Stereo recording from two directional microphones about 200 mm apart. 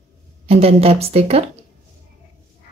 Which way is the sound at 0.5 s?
30° right (ahead or behind).